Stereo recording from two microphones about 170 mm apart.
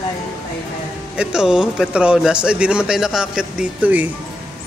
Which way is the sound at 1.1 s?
5° right (ahead or behind).